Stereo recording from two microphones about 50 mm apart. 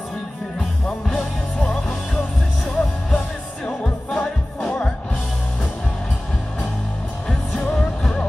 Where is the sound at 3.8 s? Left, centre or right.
Centre.